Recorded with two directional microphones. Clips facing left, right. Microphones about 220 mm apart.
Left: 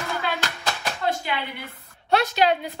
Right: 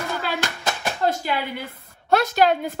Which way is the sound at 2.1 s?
45° right (ahead or behind).